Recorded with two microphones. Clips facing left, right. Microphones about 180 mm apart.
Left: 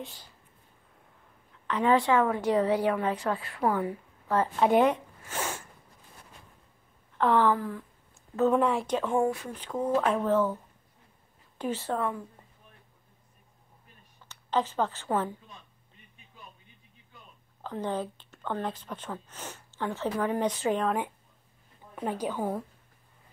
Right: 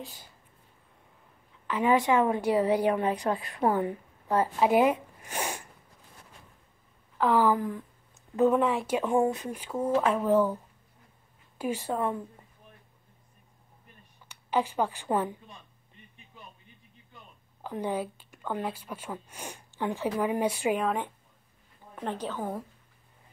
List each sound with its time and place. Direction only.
1.7 s speech: 10° right (ahead or behind)
4.3 s speech: 10° right (ahead or behind)
7.2 s speech: 5° right (ahead or behind)
8.5 s speech: centre (ahead or behind)
8.9 s speech: 15° right (ahead or behind)
14.3 s a woman's voice: 10° right (ahead or behind)
17.6 s speech: 10° right (ahead or behind)
21.9 s a woman's voice: 10° left (ahead or behind)